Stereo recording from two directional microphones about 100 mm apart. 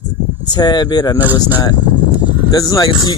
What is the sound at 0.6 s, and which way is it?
Speech, 45° left (ahead or behind).